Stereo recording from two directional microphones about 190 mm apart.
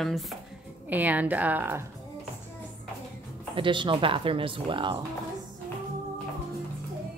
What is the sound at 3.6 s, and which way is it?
Speech, 25° right (ahead or behind).